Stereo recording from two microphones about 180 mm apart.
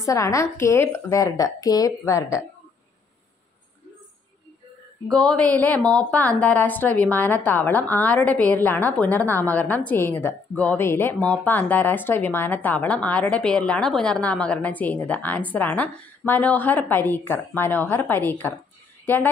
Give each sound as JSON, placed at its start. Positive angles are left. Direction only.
{"t": 0.0, "sound": "a woman's voice", "side_deg": 15}
{"t": 5.0, "sound": "a woman's voice", "side_deg": 5}